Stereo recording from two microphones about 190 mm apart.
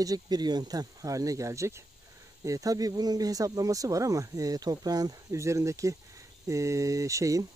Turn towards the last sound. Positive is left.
turn(degrees=-15)  # may be behind; listen again after turning